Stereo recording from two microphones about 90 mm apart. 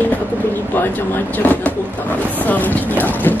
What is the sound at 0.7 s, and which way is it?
Speech, 25° left (ahead or behind).